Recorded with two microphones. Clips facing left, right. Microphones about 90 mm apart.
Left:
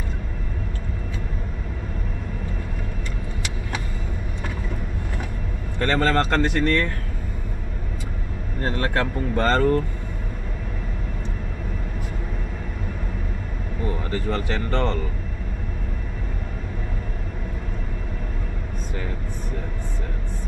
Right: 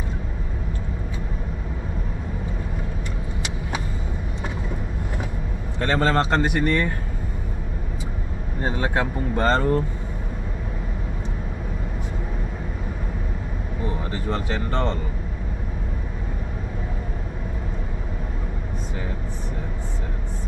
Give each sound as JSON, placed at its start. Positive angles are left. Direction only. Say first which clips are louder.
{"t": 5.8, "sound": "speech", "louder": "even", "side_deg": -15}
{"t": 8.5, "sound": "speech", "louder": "even", "side_deg": -10}
{"t": 13.8, "sound": "speech", "louder": "left 2 dB", "side_deg": -20}